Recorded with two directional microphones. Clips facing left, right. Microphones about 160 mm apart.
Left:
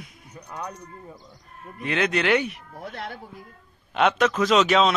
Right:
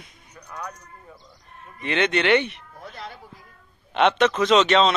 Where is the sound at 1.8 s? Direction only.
Centre (ahead or behind).